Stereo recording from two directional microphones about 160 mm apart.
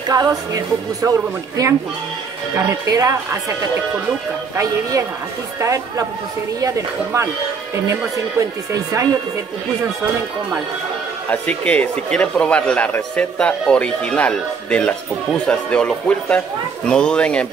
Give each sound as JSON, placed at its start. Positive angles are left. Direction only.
{"t": 0.1, "sound": "speech", "side_deg": -25}
{"t": 5.6, "sound": "speech", "side_deg": -20}
{"t": 11.2, "sound": "speech", "side_deg": 10}